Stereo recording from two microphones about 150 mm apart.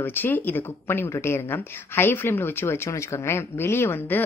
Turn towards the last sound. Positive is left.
turn(degrees=15)  # may be behind; listen again after turning